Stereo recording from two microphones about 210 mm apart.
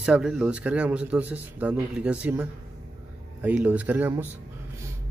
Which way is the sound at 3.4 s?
5° right (ahead or behind).